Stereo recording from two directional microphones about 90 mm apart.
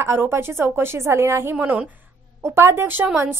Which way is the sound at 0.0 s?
25° right (ahead or behind).